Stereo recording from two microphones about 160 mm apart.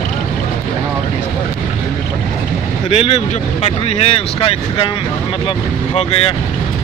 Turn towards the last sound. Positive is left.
turn(degrees=35)  # may be behind; listen again after turning